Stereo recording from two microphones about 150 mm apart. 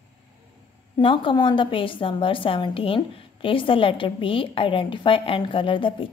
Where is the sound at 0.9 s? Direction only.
35° left (ahead or behind).